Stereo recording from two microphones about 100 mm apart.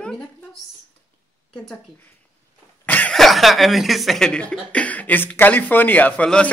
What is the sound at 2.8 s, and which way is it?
Cough, 15° left (ahead or behind).